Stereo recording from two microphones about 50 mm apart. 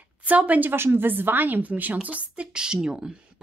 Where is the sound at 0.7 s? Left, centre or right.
Right; by 3.4 s centre.